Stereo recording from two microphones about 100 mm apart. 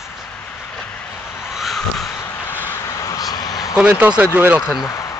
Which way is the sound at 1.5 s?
Centre (ahead or behind).